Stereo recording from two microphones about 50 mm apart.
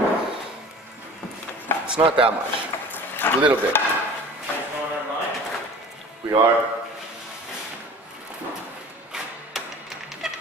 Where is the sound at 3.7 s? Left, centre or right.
Left.